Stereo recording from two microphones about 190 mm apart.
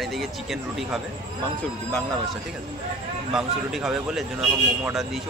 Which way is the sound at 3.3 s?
5° right (ahead or behind).